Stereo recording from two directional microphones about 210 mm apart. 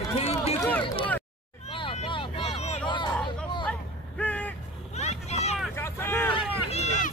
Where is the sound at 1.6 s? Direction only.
25° left (ahead or behind).